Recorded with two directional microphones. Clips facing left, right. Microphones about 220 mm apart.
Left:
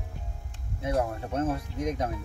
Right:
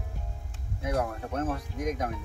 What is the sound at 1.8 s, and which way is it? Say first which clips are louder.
Speech: left 1 dB; 25° left (ahead or behind).